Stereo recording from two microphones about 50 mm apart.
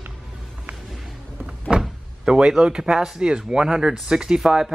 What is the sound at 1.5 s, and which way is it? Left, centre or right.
Speech, centre.